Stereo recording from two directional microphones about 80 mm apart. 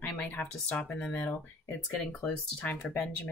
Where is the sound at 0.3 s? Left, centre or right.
Left.